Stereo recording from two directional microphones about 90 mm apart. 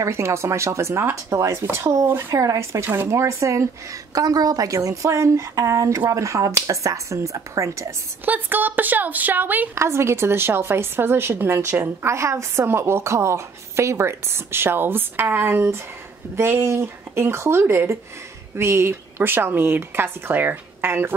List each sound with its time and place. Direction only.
0.0 s a woman's voice: 30° right (ahead or behind)
2.8 s a woman's voice: 25° right (ahead or behind)
8.3 s speech: 20° right (ahead or behind)
9.8 s speech: 30° right (ahead or behind)